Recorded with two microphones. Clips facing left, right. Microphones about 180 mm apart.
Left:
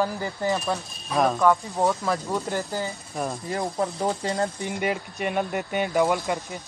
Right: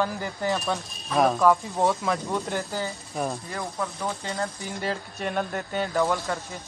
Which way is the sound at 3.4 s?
30° left (ahead or behind).